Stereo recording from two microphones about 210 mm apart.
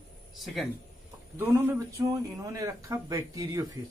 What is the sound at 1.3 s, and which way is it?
Speech, 10° right (ahead or behind).